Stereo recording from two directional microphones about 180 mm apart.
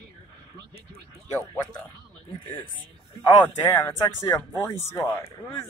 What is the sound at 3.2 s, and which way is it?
Speech, 25° left (ahead or behind).